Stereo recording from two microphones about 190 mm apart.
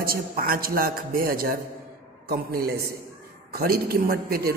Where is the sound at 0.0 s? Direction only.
50° right (ahead or behind).